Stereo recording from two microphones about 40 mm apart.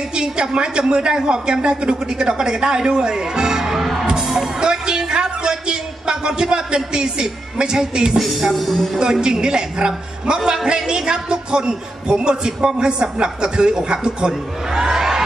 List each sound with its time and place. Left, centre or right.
0.1 s a woman's voice: right
8.5 s speech: centre
9.0 s a woman's voice: centre